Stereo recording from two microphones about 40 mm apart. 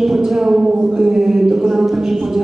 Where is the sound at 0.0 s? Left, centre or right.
Centre.